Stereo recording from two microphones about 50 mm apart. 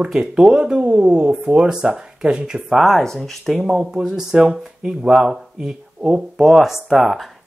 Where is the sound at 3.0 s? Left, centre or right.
Centre.